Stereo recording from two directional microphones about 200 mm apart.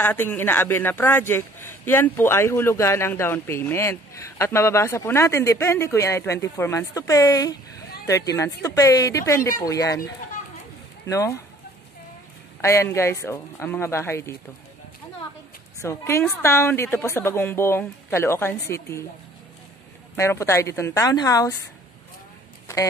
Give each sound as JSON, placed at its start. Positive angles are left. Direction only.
{"t": 0.0, "sound": "speech", "side_deg": 10}
{"t": 11.1, "sound": "speech", "side_deg": 15}
{"t": 12.6, "sound": "speech", "side_deg": 15}
{"t": 15.8, "sound": "speech", "side_deg": 15}
{"t": 20.2, "sound": "speech", "side_deg": 15}